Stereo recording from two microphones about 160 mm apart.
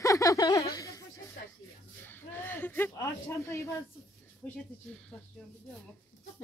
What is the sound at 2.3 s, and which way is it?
A man's voice, 10° left (ahead or behind).